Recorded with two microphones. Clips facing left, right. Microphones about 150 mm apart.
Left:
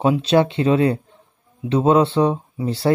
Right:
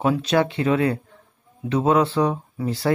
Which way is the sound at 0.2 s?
25° left (ahead or behind).